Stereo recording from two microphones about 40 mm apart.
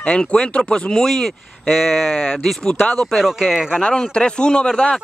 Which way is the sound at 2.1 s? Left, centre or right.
Left.